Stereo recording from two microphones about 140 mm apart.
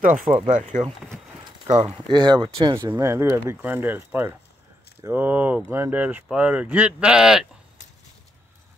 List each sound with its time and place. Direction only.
0.0 s speech: 70° right (ahead or behind)
0.5 s speech: 60° right (ahead or behind)
2.0 s speech: 30° right (ahead or behind)
2.9 s speech: 20° right (ahead or behind)